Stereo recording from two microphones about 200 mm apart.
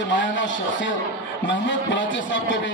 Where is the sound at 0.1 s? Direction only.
65° left (ahead or behind).